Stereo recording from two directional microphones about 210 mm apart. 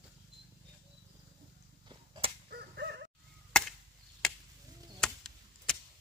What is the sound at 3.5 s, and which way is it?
Chop, 5° left (ahead or behind).